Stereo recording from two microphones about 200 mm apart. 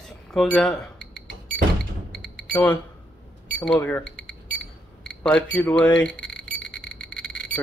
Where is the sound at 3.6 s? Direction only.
10° left (ahead or behind).